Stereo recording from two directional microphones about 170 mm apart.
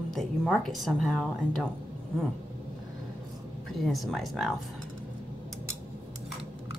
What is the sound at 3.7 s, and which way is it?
Speech, centre (ahead or behind).